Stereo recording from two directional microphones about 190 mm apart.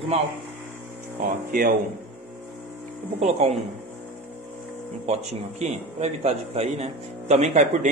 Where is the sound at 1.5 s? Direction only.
45° right (ahead or behind).